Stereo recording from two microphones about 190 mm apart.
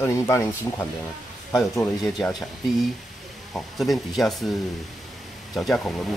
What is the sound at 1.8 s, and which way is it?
Speech, 5° left (ahead or behind).